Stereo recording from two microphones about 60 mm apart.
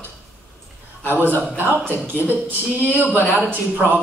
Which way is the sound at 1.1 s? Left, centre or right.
Right.